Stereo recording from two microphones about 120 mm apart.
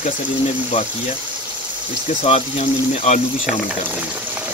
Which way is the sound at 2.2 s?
55° left (ahead or behind).